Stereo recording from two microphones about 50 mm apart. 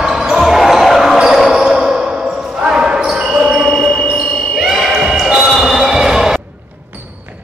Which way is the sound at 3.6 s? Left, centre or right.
Centre.